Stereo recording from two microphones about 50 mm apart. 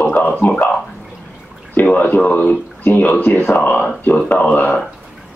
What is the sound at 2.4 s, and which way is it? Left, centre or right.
Speech, left.